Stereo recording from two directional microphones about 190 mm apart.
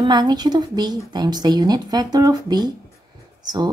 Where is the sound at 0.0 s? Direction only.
20° right (ahead or behind).